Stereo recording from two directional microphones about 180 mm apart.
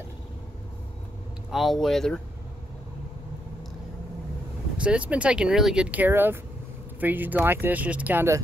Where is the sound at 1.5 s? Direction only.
Centre (ahead or behind).